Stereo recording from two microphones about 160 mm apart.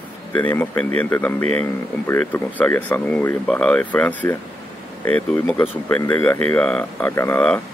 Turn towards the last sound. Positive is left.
turn(degrees=10)  # may be behind; listen again after turning